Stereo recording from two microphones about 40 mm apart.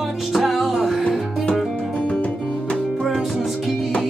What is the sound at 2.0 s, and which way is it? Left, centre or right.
Music, left.